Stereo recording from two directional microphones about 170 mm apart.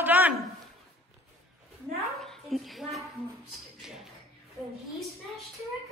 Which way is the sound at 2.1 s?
Centre (ahead or behind).